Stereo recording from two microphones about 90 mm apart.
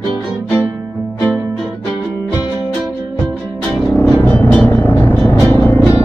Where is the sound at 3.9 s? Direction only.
25° left (ahead or behind).